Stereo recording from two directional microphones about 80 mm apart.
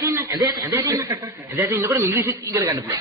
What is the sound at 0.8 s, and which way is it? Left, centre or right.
Speech, right.